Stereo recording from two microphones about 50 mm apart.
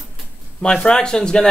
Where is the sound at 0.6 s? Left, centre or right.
Centre.